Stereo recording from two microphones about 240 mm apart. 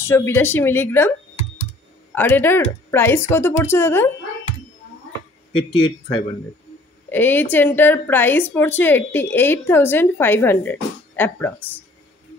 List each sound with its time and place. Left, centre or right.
0.0 s a woman's voice: centre
2.1 s a woman's voice: centre
5.5 s speech: left
7.1 s a woman's voice: centre